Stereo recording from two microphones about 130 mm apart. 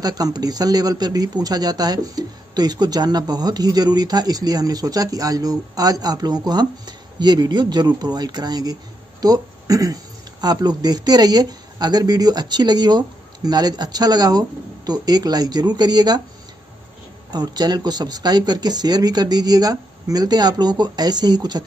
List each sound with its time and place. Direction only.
0.0 s speech: 30° right (ahead or behind)
17.3 s speech: 30° right (ahead or behind)